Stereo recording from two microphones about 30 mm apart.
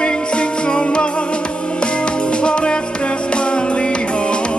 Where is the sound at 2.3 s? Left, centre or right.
Left.